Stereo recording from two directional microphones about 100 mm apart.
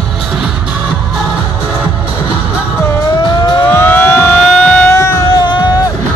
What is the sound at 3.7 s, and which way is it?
Siren, 20° left (ahead or behind).